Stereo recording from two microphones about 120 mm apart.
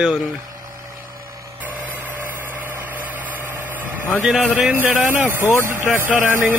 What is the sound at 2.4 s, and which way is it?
Vehicle, 15° right (ahead or behind).